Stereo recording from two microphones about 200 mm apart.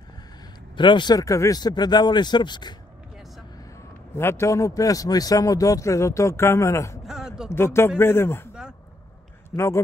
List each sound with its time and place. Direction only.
0.7 s speech: 25° left (ahead or behind)
4.1 s speech: 10° left (ahead or behind)
7.1 s a sound: 5° right (ahead or behind)
7.5 s speech: 10° left (ahead or behind)
9.5 s speech: 10° left (ahead or behind)